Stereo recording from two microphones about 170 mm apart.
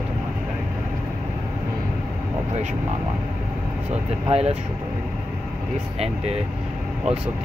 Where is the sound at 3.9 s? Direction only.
40° right (ahead or behind).